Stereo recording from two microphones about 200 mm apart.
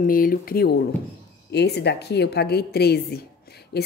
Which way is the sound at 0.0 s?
45° left (ahead or behind).